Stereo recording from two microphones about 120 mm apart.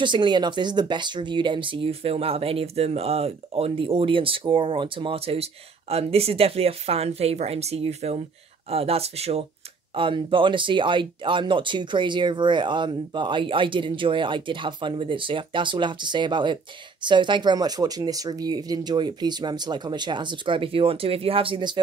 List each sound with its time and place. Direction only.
0.0 s speech: 40° right (ahead or behind); by 9.5 s 60° right (ahead or behind)
9.9 s speech: 45° right (ahead or behind)